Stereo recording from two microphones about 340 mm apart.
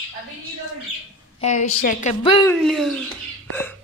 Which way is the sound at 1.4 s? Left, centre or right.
Left.